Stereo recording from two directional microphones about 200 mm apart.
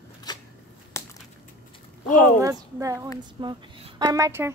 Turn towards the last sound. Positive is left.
turn(degrees=-15)  # may be behind; listen again after turning